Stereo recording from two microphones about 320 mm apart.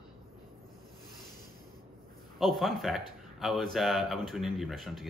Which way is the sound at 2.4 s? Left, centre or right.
Centre.